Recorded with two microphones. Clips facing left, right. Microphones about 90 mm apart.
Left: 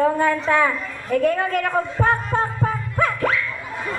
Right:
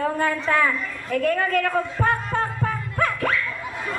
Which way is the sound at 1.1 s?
25° left (ahead or behind).